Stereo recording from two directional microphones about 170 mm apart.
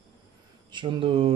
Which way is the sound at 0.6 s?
25° right (ahead or behind).